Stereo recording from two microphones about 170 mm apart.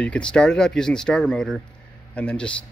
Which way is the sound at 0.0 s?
5° left (ahead or behind).